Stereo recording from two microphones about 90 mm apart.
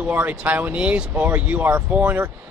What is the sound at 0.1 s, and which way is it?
Speech, 20° right (ahead or behind).